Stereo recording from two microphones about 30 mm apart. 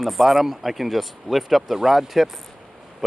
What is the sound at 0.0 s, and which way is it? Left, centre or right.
Speech, centre.